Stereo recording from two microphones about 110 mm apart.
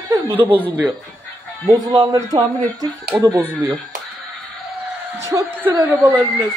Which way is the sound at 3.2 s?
25° right (ahead or behind).